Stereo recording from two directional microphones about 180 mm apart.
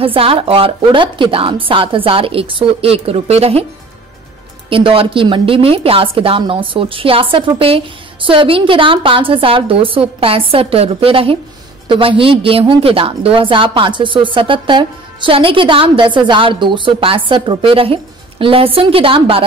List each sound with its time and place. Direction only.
0.0 s a woman's voice: 30° right (ahead or behind)
4.6 s a woman's voice: 30° right (ahead or behind)